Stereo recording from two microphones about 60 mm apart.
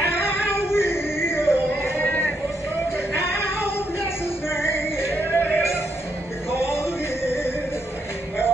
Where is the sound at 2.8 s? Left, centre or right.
Left.